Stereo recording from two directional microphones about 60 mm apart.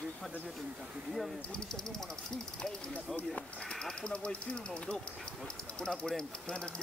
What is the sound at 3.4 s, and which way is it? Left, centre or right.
Speech, centre.